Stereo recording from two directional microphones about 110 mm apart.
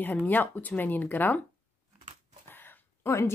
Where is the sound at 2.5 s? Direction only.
20° left (ahead or behind).